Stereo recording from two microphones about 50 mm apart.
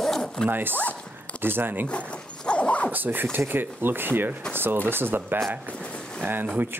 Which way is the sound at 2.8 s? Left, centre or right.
Right.